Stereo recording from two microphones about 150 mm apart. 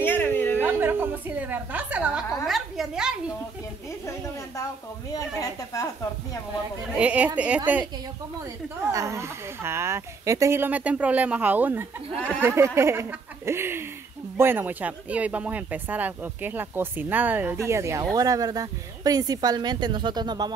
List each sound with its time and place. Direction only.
0.0 s a sound: 15° left (ahead or behind)
0.6 s speech: 15° right (ahead or behind)
5.1 s speech: 25° left (ahead or behind)
7.0 s speech: 10° right (ahead or behind)
8.9 s speech: 20° right (ahead or behind)